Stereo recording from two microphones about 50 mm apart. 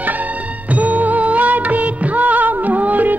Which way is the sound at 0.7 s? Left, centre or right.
Right.